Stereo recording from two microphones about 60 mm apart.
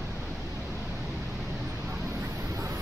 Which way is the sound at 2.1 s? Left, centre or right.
Right.